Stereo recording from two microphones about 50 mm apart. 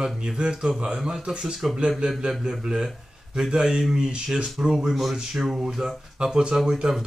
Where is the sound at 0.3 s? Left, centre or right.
Centre.